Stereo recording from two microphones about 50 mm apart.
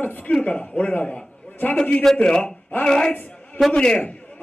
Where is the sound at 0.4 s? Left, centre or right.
Left.